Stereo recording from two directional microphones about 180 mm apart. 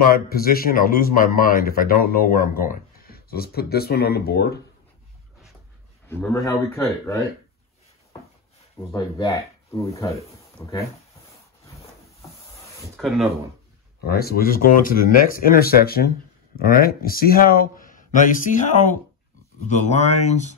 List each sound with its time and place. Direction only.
0.0 s a man's voice: 55° left (ahead or behind)
6.0 s speech: 15° left (ahead or behind)
8.7 s speech: 20° left (ahead or behind)
12.9 s speech: centre (ahead or behind)
14.0 s a man's voice: 60° left (ahead or behind); by 20.5 s 40° left (ahead or behind)